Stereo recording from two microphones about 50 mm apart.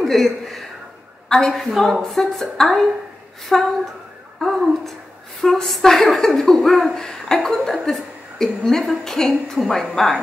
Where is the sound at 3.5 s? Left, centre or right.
Centre.